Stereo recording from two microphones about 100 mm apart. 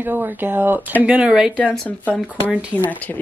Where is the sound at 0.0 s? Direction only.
20° right (ahead or behind).